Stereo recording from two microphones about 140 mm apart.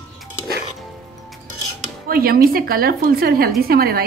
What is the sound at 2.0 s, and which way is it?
A woman's voice, 90° right.